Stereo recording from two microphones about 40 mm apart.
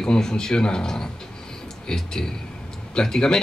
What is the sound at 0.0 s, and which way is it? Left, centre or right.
A man's voice, centre.